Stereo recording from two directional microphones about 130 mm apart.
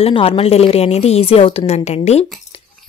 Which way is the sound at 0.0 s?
45° left (ahead or behind).